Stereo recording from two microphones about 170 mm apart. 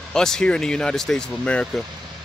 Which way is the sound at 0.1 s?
5° left (ahead or behind).